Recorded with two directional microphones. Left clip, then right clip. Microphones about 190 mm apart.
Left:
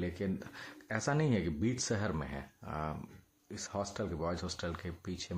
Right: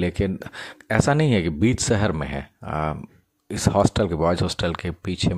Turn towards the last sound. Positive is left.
turn(degrees=-45)  # may be behind; listen again after turning